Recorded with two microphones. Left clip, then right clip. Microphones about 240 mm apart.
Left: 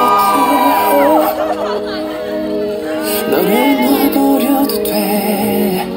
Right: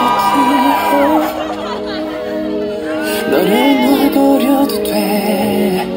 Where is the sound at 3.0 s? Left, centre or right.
Left.